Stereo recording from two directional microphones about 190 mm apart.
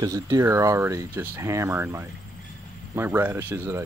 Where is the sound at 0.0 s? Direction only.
15° right (ahead or behind).